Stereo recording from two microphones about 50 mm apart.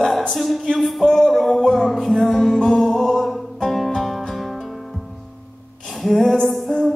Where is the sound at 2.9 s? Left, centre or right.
Centre.